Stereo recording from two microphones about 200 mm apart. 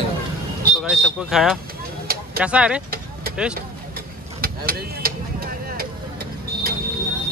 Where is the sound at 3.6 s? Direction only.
50° right (ahead or behind).